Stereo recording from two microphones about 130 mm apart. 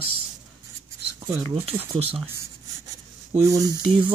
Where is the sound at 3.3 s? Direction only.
25° right (ahead or behind).